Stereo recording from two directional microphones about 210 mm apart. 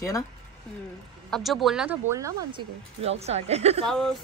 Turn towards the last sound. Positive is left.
turn(degrees=5)  # may be behind; listen again after turning